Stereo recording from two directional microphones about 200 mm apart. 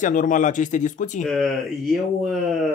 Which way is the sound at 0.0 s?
40° left (ahead or behind).